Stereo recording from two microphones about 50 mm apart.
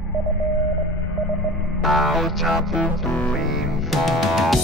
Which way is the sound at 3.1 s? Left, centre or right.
Left.